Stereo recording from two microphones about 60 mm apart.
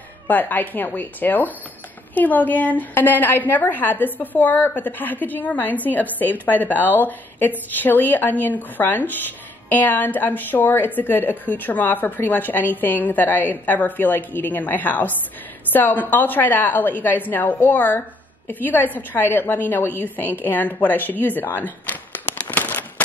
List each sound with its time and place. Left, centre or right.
0.3 s a woman's voice: left